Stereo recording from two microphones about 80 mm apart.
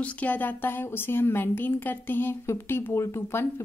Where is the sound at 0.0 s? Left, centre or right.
Centre.